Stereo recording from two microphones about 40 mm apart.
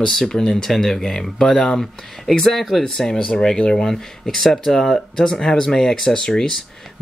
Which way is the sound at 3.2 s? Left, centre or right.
Left.